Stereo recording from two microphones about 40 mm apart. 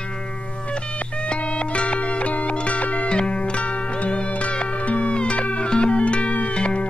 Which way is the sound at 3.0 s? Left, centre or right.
Left.